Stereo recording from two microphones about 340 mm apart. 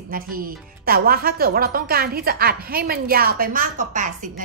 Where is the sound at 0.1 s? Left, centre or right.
Right.